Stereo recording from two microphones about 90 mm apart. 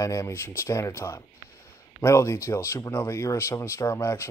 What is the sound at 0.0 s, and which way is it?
Speech, 35° left (ahead or behind).